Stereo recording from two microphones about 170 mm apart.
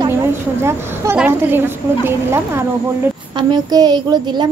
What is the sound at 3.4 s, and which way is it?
A woman's voice, 25° right (ahead or behind).